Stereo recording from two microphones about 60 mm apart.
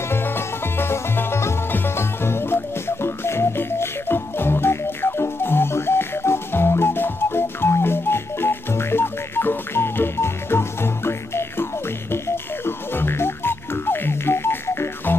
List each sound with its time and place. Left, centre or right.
0.1 s music: left
12.6 s music: left